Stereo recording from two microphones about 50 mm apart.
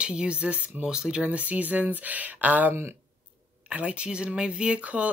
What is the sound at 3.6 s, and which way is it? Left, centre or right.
Speech, right.